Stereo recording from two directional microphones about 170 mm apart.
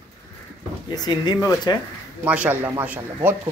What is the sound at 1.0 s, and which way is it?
Speech, 25° left (ahead or behind).